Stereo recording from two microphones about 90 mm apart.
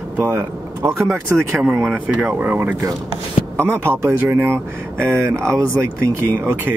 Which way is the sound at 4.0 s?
30° right (ahead or behind).